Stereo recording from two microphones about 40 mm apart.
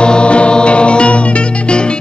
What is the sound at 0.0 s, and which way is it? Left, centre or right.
Music, left.